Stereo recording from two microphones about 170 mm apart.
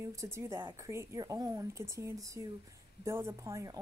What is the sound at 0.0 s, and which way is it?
A woman's voice, 20° right (ahead or behind).